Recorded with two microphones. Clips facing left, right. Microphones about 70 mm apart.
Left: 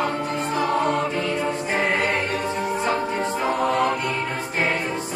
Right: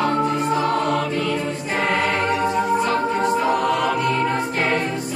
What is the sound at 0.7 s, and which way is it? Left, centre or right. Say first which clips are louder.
Music: right 1 dB; left.